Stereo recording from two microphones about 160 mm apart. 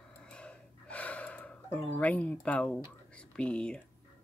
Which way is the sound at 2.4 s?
10° left (ahead or behind).